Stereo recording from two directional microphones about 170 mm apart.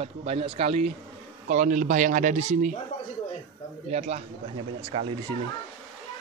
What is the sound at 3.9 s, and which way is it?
Speech, 40° right (ahead or behind).